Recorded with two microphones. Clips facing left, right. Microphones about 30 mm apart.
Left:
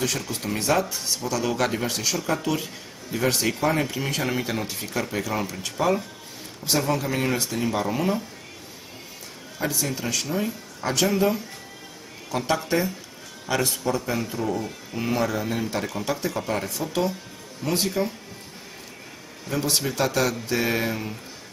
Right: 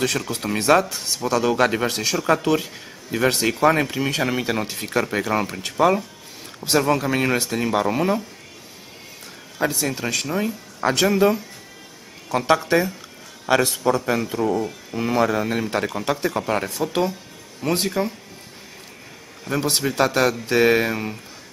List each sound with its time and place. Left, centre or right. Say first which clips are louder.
0.3 s speech: right 7 dB; right
4.5 s speech: right 4 dB; right
9.7 s speech: right 1 dB; right
12.5 s speech: right 4 dB; right
14.4 s speech: right 5 dB; centre
15.2 s speech: right 4 dB; right
19.4 s speech: right 3 dB; right